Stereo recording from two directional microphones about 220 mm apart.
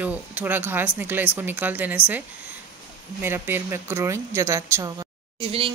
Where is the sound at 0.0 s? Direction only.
5° right (ahead or behind).